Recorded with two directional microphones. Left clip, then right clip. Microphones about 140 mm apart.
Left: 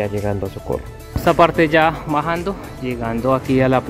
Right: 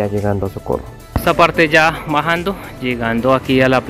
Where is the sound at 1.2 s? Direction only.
25° left (ahead or behind).